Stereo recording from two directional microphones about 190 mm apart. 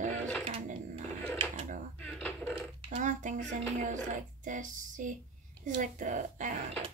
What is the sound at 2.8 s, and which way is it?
Speech, 40° right (ahead or behind).